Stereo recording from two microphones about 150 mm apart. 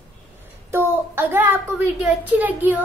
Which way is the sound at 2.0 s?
10° right (ahead or behind).